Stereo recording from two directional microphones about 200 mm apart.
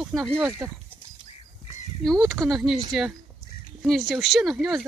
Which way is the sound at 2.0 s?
Centre (ahead or behind).